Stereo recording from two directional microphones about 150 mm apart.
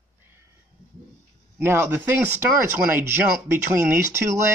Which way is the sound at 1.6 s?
15° right (ahead or behind).